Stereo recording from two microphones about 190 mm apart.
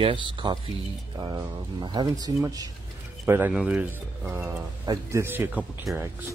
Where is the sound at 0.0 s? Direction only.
25° right (ahead or behind); by 6.2 s 10° right (ahead or behind).